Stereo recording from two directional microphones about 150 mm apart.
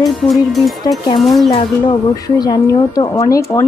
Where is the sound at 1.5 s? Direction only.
30° left (ahead or behind).